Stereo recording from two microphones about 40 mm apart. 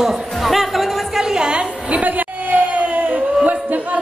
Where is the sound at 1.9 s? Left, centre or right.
Right.